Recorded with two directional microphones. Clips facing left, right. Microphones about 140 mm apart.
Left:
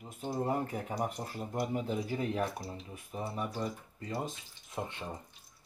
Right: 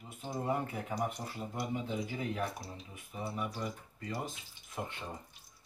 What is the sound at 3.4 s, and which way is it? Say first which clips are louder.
Speech: left 3 dB; 30° left (ahead or behind).